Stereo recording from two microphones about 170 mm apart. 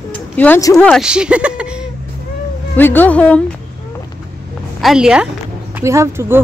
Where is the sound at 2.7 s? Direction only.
10° left (ahead or behind).